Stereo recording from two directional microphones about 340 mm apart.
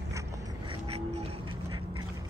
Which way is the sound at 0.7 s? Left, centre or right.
Centre.